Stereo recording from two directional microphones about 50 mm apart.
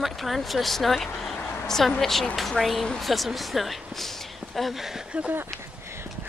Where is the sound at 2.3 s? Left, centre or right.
Centre.